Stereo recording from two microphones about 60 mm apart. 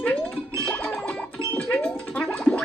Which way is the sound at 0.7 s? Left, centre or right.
Left.